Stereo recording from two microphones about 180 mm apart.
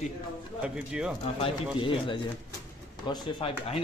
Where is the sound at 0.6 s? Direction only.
5° right (ahead or behind).